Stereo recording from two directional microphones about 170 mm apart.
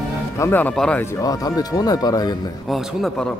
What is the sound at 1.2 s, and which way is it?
Speech, 20° left (ahead or behind).